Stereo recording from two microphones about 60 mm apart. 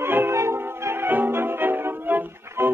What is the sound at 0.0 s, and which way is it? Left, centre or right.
Music, right.